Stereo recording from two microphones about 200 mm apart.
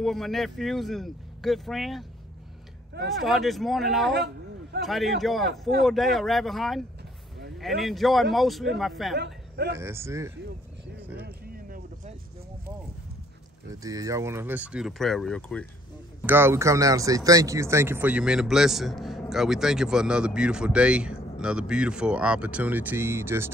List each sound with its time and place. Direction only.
0.0 s speech: centre (ahead or behind)
3.1 s speech: centre (ahead or behind)
9.1 s speech: 55° right (ahead or behind)
9.8 s a man's voice: 15° right (ahead or behind)
11.1 s a sound: 50° right (ahead or behind)
13.8 s speech: 15° right (ahead or behind); by 15.6 s 5° left (ahead or behind)
16.3 s speech: 10° right (ahead or behind)